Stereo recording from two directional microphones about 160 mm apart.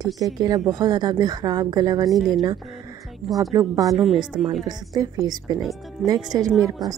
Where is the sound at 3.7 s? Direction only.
20° right (ahead or behind).